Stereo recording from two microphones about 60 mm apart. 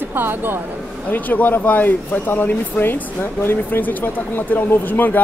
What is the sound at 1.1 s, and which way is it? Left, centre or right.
Speech, left.